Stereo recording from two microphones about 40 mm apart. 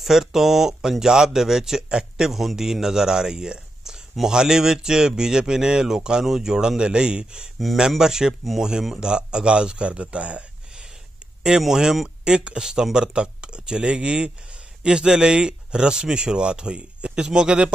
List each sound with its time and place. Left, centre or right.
0.0 s speech: centre; by 10.4 s right
11.4 s speech: centre
12.3 s speech: right